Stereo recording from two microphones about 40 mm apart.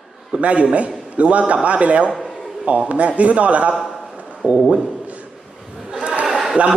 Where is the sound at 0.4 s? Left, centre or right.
Right.